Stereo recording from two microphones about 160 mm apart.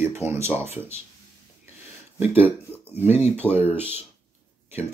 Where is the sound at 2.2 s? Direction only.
15° right (ahead or behind).